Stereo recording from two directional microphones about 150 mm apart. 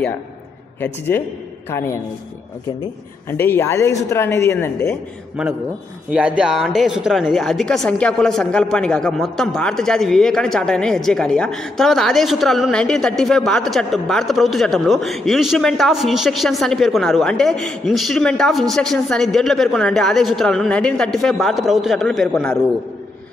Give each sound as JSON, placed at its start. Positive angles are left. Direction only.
{"t": 0.7, "sound": "speech", "side_deg": 15}
{"t": 3.3, "sound": "speech", "side_deg": 15}
{"t": 6.0, "sound": "speech", "side_deg": -10}